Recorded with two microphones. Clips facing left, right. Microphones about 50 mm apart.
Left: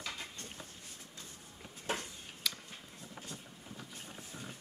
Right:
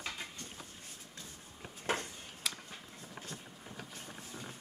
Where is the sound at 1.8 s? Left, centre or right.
Right.